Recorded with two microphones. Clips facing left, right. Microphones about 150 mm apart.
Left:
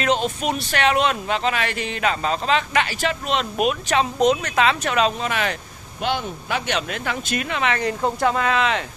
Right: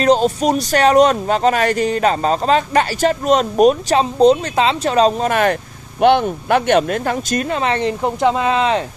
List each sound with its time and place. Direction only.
0.0 s speech: 35° right (ahead or behind)
8.0 s speech: 20° right (ahead or behind)